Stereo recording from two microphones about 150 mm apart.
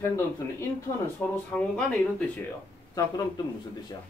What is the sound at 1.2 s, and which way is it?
Speech, 10° left (ahead or behind).